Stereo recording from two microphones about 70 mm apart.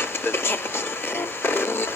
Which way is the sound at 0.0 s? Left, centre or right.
Left.